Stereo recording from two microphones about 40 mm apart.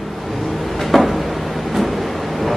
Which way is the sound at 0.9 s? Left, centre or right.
Centre.